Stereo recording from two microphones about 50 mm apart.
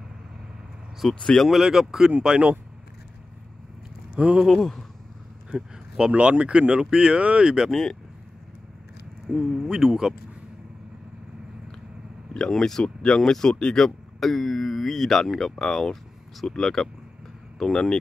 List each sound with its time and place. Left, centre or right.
1.2 s speech: centre
1.5 s speech: centre
4.1 s speech: centre
4.5 s speech: centre
5.5 s a sound: centre
6.1 s speech: right
7.7 s speech: centre
9.3 s speech: centre
12.4 s speech: centre